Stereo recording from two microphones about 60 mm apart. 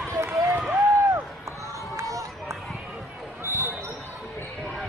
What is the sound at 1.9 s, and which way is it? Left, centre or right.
Run, right.